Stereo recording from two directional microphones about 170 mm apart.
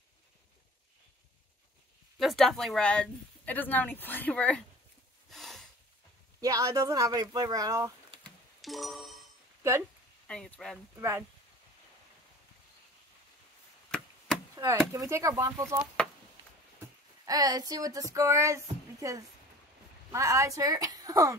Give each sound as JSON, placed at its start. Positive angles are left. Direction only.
{"t": 2.1, "sound": "speech", "side_deg": 0}
{"t": 5.3, "sound": "snort", "side_deg": 0}
{"t": 6.4, "sound": "speech", "side_deg": -20}
{"t": 8.5, "sound": "music", "side_deg": 0}
{"t": 9.6, "sound": "a sound", "side_deg": -15}
{"t": 10.2, "sound": "speech", "side_deg": 5}
{"t": 11.0, "sound": "speech", "side_deg": -15}
{"t": 13.8, "sound": "chop", "side_deg": 5}
{"t": 14.5, "sound": "chop", "side_deg": -20}
{"t": 14.9, "sound": "speech", "side_deg": -15}
{"t": 17.3, "sound": "speech", "side_deg": -20}